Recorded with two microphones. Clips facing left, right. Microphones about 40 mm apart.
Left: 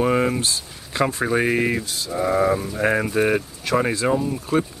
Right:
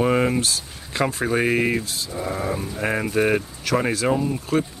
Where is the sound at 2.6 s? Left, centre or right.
Centre.